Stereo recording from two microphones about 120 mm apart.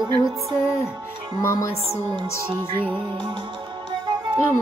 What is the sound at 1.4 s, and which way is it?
Music, 25° left (ahead or behind).